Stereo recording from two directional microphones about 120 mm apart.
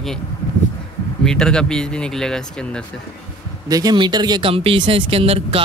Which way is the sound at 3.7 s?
30° right (ahead or behind).